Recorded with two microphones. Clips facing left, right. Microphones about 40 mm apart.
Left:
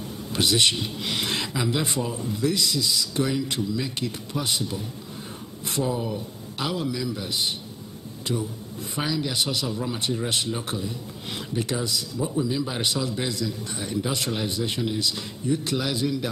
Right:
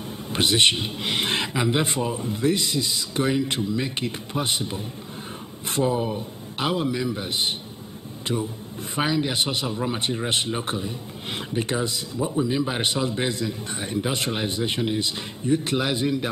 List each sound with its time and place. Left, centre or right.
0.3 s speech: right